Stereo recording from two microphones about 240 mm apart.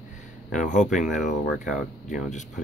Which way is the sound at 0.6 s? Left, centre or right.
Left.